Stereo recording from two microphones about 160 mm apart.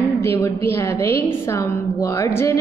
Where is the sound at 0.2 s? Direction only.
15° left (ahead or behind).